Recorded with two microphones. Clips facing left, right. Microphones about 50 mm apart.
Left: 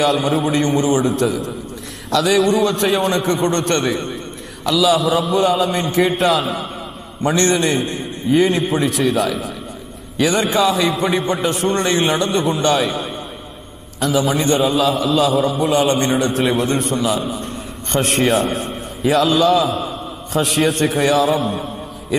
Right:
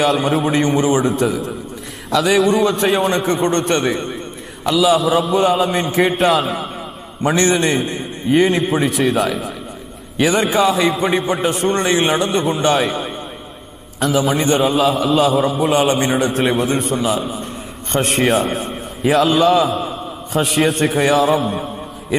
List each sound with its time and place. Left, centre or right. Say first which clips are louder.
0.1 s a man's voice: right 1 dB; centre
1.0 s a man's voice: right 1 dB; centre
4.6 s a man's voice: right 1 dB; centre
4.9 s a man's voice: right 1 dB; centre
7.5 s a man's voice: right 1 dB; centre
14.2 s a man's voice: right 1 dB; centre